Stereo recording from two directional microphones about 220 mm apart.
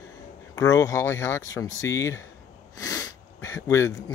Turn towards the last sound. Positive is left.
turn(degrees=15)  # may be behind; listen again after turning